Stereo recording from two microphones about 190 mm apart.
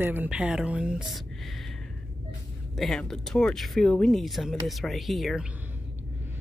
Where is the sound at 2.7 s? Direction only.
Centre (ahead or behind).